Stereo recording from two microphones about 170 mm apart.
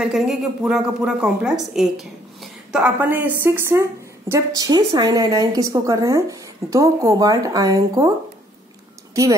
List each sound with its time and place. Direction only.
0.0 s a woman's voice: centre (ahead or behind); by 8.1 s 20° right (ahead or behind)